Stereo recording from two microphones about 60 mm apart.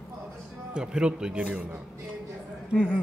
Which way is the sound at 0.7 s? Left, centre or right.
Centre.